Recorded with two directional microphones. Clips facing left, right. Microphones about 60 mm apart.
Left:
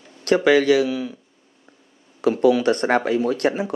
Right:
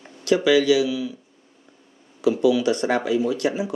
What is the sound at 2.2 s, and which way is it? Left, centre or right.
A man's voice, left.